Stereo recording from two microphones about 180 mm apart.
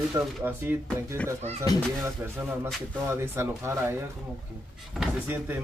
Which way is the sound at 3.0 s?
15° right (ahead or behind).